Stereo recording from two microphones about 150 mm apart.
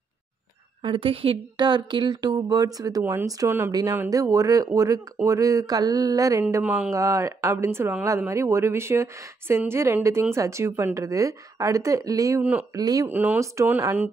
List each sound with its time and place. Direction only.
0.8 s speech: 35° right (ahead or behind)
6.6 s speech: 5° right (ahead or behind)
6.9 s speech: 20° right (ahead or behind)
13.1 s speech: 10° right (ahead or behind)